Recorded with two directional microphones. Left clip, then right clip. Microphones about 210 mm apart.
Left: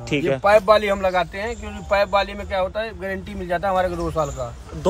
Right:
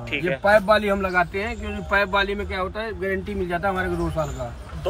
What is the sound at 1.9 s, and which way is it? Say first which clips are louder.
A man's voice: left 2 dB; 40° left (ahead or behind).